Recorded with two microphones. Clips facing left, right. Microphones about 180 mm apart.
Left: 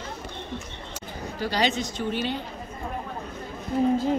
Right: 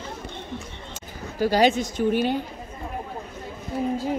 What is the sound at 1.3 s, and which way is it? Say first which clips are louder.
Speech: right 6 dB; 45° right (ahead or behind).